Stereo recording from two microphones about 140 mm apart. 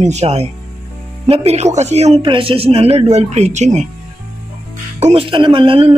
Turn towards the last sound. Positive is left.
turn(degrees=-40)  # may be behind; listen again after turning